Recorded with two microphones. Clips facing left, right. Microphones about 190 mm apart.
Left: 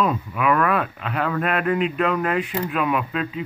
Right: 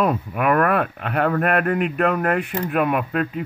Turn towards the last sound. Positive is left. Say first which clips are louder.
# right 2 dB
turn(degrees=-55)  # may be behind; listen again after turning